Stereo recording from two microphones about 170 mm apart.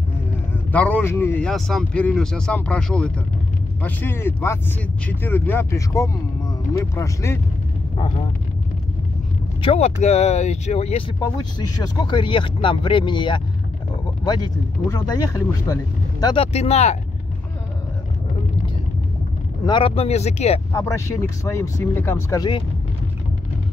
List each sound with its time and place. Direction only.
0.7 s speech: 10° left (ahead or behind)
9.6 s speech: 35° left (ahead or behind)
11.1 s speech: 25° left (ahead or behind)
16.5 s speech: 40° left (ahead or behind)
19.6 s speech: 30° left (ahead or behind)
20.7 s speech: 15° left (ahead or behind)